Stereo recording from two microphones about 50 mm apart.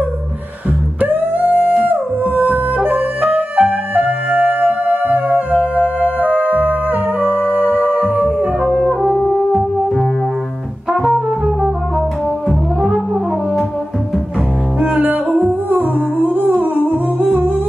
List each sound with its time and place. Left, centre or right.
1.0 s music: right
8.5 s music: centre
10.9 s brass instrument: centre
12.4 s brass instrument: centre
15.0 s music: right